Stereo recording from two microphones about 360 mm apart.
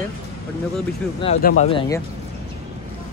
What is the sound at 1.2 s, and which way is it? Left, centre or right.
Speech, centre.